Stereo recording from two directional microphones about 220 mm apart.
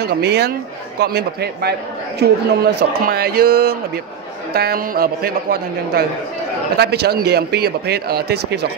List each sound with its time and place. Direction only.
0.0 s a man's voice: 45° right (ahead or behind)